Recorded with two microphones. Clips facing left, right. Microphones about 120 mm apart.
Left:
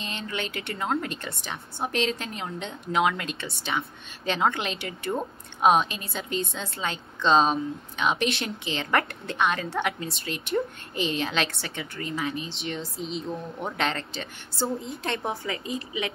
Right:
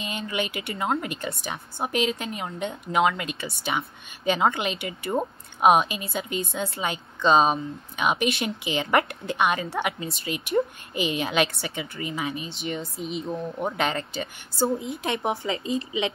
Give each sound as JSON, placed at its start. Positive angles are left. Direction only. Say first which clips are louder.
{"t": 0.0, "sound": "a woman's voice", "louder": "right 3 dB", "side_deg": -5}
{"t": 15.0, "sound": "a woman's voice", "louder": "right 3 dB", "side_deg": -20}